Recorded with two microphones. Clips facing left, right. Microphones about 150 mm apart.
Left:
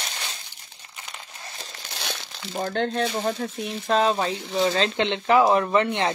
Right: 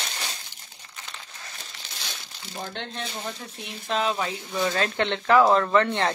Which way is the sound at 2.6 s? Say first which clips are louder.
Left 10 dB; 45° left (ahead or behind).